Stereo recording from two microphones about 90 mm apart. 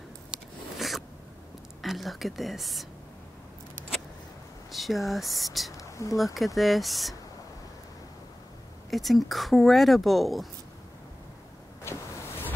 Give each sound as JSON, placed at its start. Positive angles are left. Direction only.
{"t": 0.7, "sound": "zipper", "side_deg": 0}
{"t": 1.8, "sound": "speech", "side_deg": 0}
{"t": 4.7, "sound": "speech", "side_deg": 0}
{"t": 5.7, "sound": "a sound", "side_deg": 35}
{"t": 6.1, "sound": "speech", "side_deg": 0}
{"t": 8.9, "sound": "speech", "side_deg": 0}
{"t": 11.8, "sound": "vehicle", "side_deg": 25}